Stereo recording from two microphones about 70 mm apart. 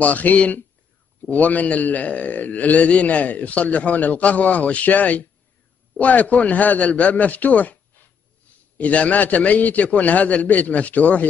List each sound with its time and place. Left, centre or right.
0.0 s a man's voice: left